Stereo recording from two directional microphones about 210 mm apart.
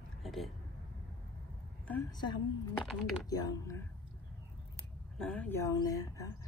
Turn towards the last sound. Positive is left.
turn(degrees=15)  # may be behind; listen again after turning